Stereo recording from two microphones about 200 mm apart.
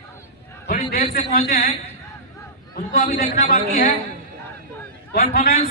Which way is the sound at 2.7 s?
45° left (ahead or behind).